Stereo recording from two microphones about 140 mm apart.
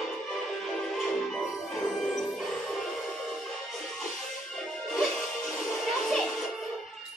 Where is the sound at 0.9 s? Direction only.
Centre (ahead or behind).